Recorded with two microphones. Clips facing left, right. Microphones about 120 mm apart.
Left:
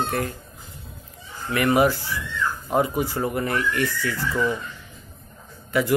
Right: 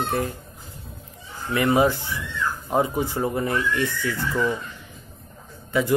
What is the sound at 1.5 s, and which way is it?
A man's voice, 20° right (ahead or behind).